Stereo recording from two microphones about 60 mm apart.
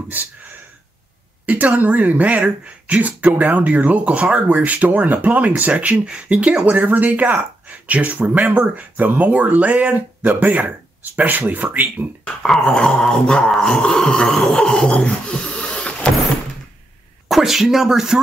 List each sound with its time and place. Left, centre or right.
0.1 s speech: right
12.4 s dog: centre
17.3 s speech: centre